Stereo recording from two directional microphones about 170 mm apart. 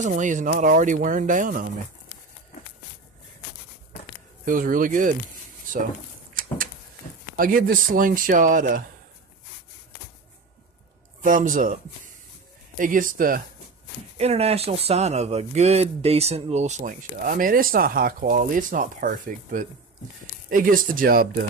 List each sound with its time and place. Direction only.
0.0 s speech: 45° right (ahead or behind)
4.5 s speech: 55° right (ahead or behind)
7.3 s speech: 55° right (ahead or behind)
11.2 s speech: 50° right (ahead or behind)
14.1 s speech: 40° right (ahead or behind); by 21.5 s 55° right (ahead or behind)